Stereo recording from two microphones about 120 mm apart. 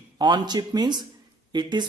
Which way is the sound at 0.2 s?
35° right (ahead or behind).